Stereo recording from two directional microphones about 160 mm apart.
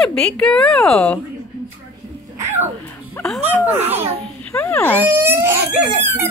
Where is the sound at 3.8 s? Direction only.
40° right (ahead or behind).